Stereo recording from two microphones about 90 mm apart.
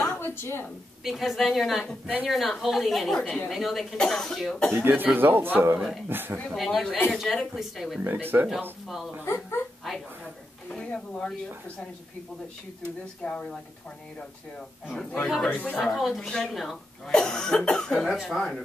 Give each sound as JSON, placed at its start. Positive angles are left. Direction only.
{"t": 0.2, "sound": "a woman's voice", "side_deg": 30}
{"t": 1.0, "sound": "a woman's voice", "side_deg": 0}
{"t": 4.7, "sound": "a man's voice", "side_deg": -20}
{"t": 6.5, "sound": "a woman's voice", "side_deg": 0}
{"t": 8.0, "sound": "a man's voice", "side_deg": -25}
{"t": 8.8, "sound": "a woman's voice", "side_deg": -5}
{"t": 9.2, "sound": "speech", "side_deg": 30}
{"t": 10.7, "sound": "speech", "side_deg": 10}
{"t": 13.2, "sound": "speech", "side_deg": 10}
{"t": 15.2, "sound": "a woman's voice", "side_deg": 0}
{"t": 15.5, "sound": "speech", "side_deg": 20}
{"t": 15.8, "sound": "speech", "side_deg": 0}
{"t": 18.1, "sound": "a woman's voice", "side_deg": -5}